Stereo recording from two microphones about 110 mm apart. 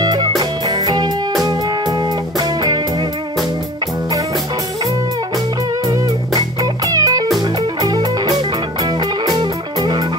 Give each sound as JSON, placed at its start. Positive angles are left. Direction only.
{"t": 0.0, "sound": "music", "side_deg": -40}
{"t": 5.9, "sound": "music", "side_deg": -35}